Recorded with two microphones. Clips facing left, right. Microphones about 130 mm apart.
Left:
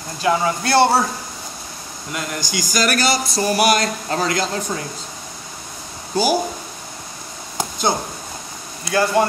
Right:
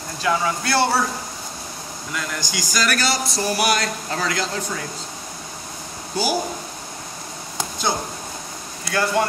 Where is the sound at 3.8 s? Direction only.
35° left (ahead or behind).